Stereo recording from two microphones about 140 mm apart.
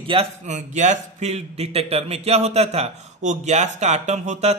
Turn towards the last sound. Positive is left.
turn(degrees=-55)  # may be behind; listen again after turning